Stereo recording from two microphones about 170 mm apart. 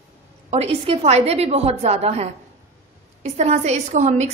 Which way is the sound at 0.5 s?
35° right (ahead or behind).